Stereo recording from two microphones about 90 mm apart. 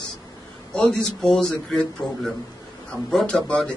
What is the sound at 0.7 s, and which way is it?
A man's voice, 5° left (ahead or behind).